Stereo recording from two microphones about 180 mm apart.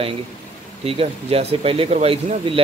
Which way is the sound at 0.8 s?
30° right (ahead or behind).